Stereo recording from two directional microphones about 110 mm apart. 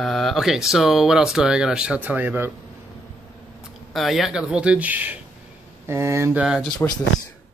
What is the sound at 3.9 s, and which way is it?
Speech, centre (ahead or behind).